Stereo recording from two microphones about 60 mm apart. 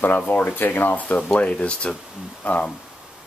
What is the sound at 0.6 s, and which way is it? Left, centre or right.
Speech, left.